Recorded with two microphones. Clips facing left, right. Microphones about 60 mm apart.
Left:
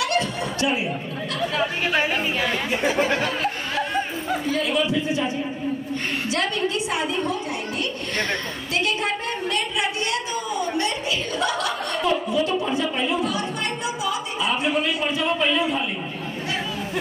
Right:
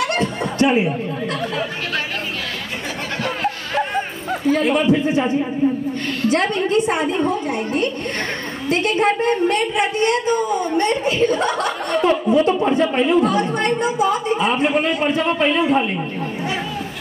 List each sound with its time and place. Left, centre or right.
0.0 s snicker: right
4.5 s speech: right
6.3 s a woman's voice: right